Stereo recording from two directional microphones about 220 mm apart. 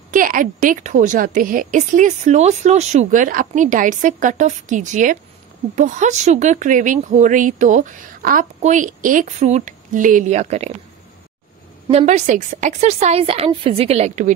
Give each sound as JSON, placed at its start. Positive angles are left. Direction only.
{"t": 0.1, "sound": "a woman's voice", "side_deg": -35}
{"t": 11.9, "sound": "a woman's voice", "side_deg": -30}